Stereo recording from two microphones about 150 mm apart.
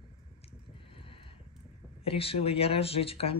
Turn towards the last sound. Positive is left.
turn(degrees=40)  # may be behind; listen again after turning